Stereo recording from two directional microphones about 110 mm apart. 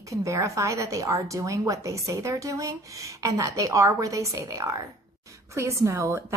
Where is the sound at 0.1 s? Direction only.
30° right (ahead or behind).